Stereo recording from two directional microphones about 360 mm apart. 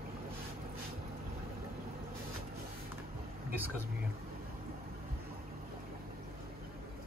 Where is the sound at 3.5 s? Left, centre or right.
Centre.